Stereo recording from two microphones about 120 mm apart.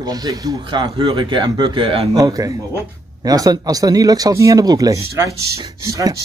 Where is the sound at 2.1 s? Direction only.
30° right (ahead or behind).